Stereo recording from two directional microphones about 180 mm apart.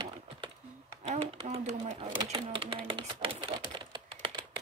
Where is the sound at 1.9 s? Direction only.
25° right (ahead or behind).